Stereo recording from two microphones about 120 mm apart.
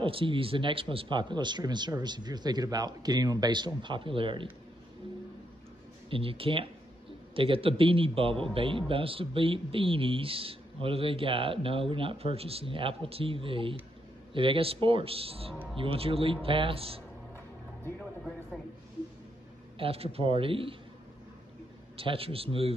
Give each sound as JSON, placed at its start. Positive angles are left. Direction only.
{"t": 0.0, "sound": "speech", "side_deg": -45}
{"t": 6.0, "sound": "a man's voice", "side_deg": -50}
{"t": 19.8, "sound": "a man's voice", "side_deg": -55}
{"t": 21.9, "sound": "a man's voice", "side_deg": -50}